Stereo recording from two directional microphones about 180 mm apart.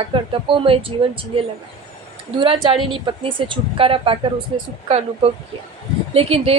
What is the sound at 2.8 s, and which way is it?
Speech, 25° right (ahead or behind).